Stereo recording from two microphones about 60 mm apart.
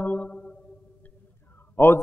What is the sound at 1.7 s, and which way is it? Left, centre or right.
Speech, left.